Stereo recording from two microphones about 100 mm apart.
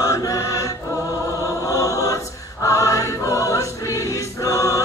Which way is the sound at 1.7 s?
35° left (ahead or behind).